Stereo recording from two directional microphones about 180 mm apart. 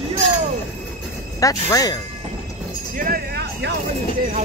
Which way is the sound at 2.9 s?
55° right (ahead or behind).